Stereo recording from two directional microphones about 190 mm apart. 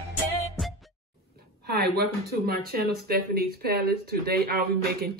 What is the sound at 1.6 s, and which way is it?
Speech, 55° right (ahead or behind).